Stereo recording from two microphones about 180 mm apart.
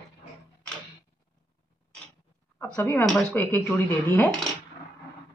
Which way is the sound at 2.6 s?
10° left (ahead or behind).